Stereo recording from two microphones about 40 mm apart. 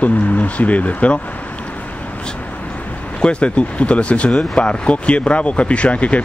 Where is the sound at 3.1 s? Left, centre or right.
Left.